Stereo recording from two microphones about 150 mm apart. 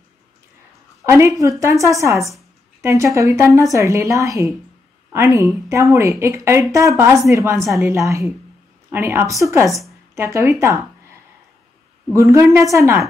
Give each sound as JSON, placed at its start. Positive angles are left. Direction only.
{"t": 1.0, "sound": "a woman's voice", "side_deg": -20}
{"t": 12.1, "sound": "a woman's voice", "side_deg": -20}